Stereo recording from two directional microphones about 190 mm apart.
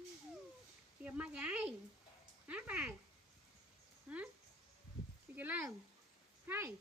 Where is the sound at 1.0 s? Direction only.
5° right (ahead or behind).